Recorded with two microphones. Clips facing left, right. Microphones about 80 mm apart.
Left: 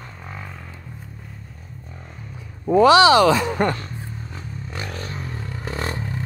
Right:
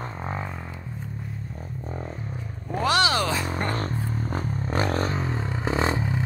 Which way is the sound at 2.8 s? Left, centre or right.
Left.